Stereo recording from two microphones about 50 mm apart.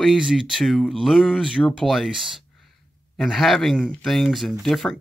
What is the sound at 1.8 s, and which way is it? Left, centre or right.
Speech, centre.